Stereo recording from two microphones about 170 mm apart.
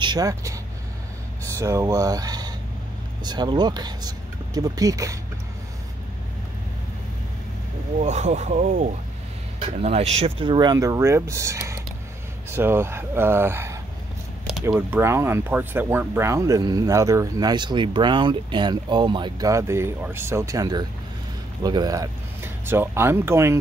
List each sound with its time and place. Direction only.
0.0 s speech: 25° right (ahead or behind)
1.6 s speech: 20° right (ahead or behind)
8.0 s speech: 40° right (ahead or behind); by 23.6 s 15° right (ahead or behind)